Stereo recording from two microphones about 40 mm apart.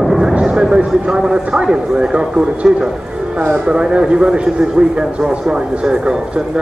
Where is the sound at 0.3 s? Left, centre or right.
Right.